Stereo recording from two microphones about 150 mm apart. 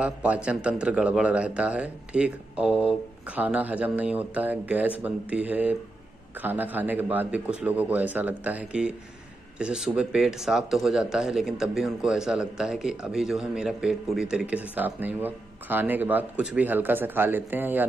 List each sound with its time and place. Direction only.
0.0 s speech: 10° right (ahead or behind)